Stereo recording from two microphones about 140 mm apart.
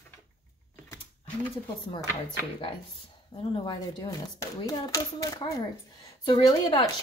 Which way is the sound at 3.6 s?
30° left (ahead or behind).